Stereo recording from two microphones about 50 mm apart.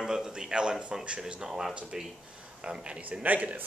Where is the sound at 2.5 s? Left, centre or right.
Right.